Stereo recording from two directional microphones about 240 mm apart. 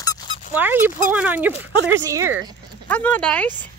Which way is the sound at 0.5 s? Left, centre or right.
Centre.